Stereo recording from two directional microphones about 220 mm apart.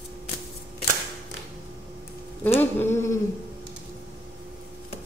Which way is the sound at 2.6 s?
10° left (ahead or behind).